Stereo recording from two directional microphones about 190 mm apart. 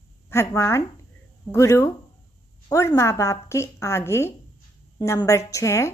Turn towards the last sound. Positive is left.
turn(degrees=15)  # may be behind; listen again after turning